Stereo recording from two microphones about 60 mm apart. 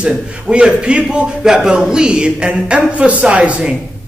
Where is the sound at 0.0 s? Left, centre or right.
Centre.